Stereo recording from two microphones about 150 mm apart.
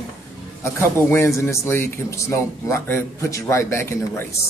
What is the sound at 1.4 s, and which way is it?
A man's voice, 15° left (ahead or behind).